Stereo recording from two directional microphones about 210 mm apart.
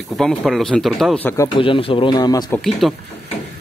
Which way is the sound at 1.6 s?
25° left (ahead or behind).